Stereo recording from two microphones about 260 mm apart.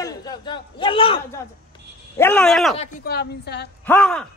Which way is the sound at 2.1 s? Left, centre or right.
Centre.